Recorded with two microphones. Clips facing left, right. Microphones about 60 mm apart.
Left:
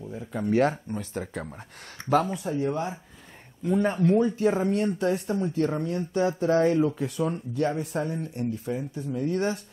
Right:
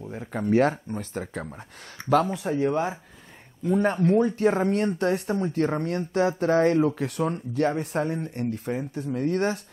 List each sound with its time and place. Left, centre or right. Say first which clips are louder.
0.1 s speech: right 2 dB; right
0.4 s speech: right 2 dB; right
2.3 s speech: right 3 dB; right
3.8 s speech: right 1 dB; right
5.6 s speech: right 1 dB; right
5.9 s speech: right 2 dB; right
6.2 s speech: right 1 dB; right